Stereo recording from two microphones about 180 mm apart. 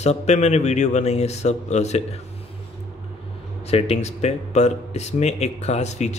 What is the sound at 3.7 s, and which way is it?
Speech, 35° left (ahead or behind).